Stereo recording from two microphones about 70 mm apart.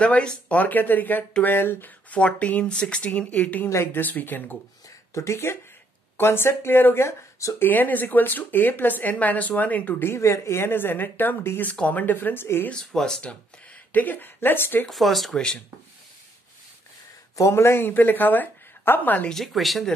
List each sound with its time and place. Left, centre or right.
0.0 s speech: centre; by 1.9 s left
2.0 s speech: centre
3.6 s speech: left
4.8 s a sound: left
6.1 s speech: left
7.5 s speech: left
12.6 s speech: centre; by 14.9 s left
14.9 s speech: centre
17.4 s speech: left
19.2 s speech: centre